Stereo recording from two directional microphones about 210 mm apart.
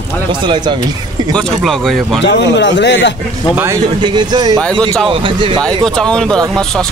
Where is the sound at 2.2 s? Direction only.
55° left (ahead or behind).